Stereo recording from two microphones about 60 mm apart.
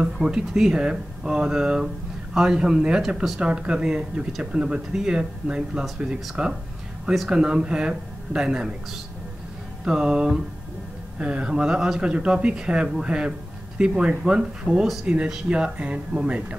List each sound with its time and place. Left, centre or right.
0.0 s speech: centre
9.8 s speech: centre